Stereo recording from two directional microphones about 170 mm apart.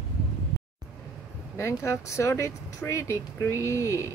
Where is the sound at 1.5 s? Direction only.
15° left (ahead or behind).